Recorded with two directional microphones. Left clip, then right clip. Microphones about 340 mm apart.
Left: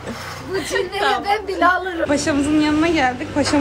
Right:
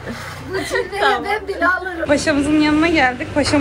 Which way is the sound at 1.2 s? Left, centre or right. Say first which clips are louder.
Left 1 dB; centre.